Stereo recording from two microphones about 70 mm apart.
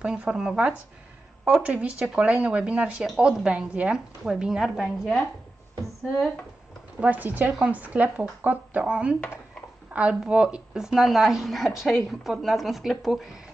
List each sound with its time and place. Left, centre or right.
0.0 s a woman's voice: centre
1.6 s a woman's voice: centre
4.2 s a woman's voice: centre
7.0 s a woman's voice: right; by 13.3 s centre